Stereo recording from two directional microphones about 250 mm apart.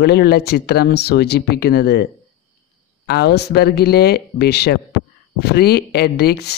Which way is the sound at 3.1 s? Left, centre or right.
Left.